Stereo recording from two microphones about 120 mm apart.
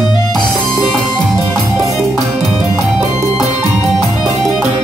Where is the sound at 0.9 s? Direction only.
5° left (ahead or behind).